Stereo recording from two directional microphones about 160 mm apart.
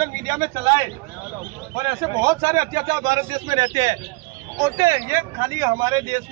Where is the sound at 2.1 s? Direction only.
20° right (ahead or behind).